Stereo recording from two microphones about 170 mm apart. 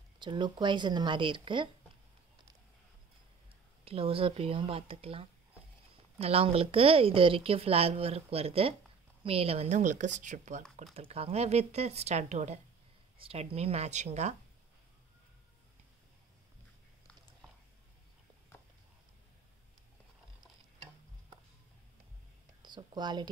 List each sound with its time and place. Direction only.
0.2 s a woman's voice: 25° right (ahead or behind)
3.8 s a woman's voice: 35° right (ahead or behind)
10.8 s a woman's voice: 35° right (ahead or behind)
22.6 s speech: 25° right (ahead or behind)